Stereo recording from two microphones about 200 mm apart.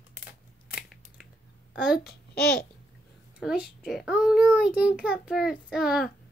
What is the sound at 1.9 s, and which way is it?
Speech, 50° left (ahead or behind).